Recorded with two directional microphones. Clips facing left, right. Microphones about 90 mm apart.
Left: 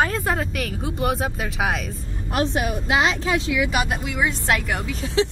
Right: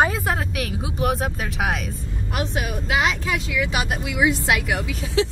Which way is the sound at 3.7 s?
10° right (ahead or behind).